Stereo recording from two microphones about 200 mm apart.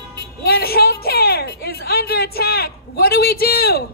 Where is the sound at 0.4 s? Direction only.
50° left (ahead or behind).